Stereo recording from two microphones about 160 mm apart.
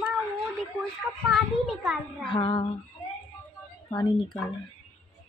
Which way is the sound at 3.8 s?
30° left (ahead or behind).